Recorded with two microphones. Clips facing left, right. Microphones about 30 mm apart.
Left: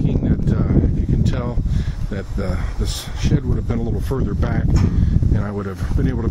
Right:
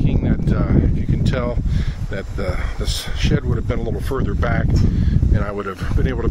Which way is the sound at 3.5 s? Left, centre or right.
Right.